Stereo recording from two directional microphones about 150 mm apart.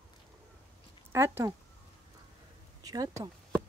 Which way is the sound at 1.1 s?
15° right (ahead or behind).